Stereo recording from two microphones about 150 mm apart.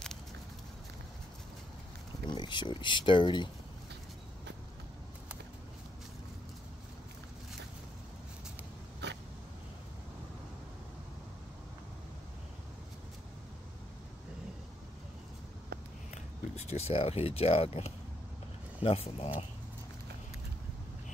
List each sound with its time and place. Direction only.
2.2 s speech: 30° left (ahead or behind)
16.5 s speech: 45° left (ahead or behind)